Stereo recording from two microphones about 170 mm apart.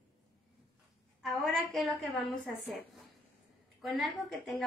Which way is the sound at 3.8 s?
Centre (ahead or behind).